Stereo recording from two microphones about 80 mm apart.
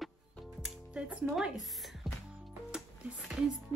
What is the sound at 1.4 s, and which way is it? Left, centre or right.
Music, centre.